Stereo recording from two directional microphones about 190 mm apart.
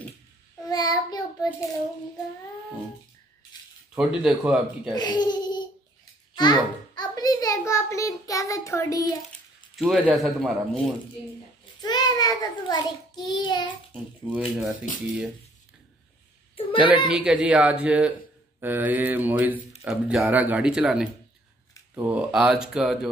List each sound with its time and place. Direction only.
0.7 s a child's voice: 20° left (ahead or behind)
3.9 s speech: 5° right (ahead or behind)
4.9 s speech: 20° left (ahead or behind)
6.3 s a sound: 20° left (ahead or behind)
9.8 s speech: centre (ahead or behind)
11.8 s a child's voice: 20° left (ahead or behind)
14.3 s speech: 5° right (ahead or behind)
16.7 s mantra: 5° right (ahead or behind)
17.1 s speech: 5° right (ahead or behind)
18.6 s mantra: 10° right (ahead or behind)
19.9 s speech: 5° right (ahead or behind)